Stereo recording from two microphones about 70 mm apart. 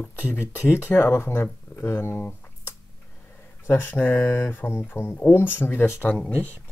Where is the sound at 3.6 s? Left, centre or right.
Left.